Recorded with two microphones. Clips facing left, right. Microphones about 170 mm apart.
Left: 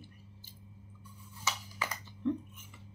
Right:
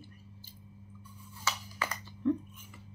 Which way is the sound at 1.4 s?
20° left (ahead or behind).